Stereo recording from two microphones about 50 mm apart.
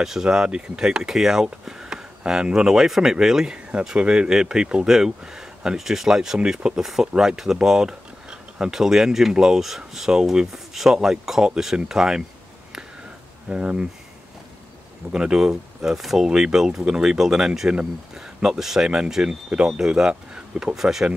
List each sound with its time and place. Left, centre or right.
0.0 s speech: centre
13.5 s speech: centre
15.1 s speech: centre
20.7 s speech: centre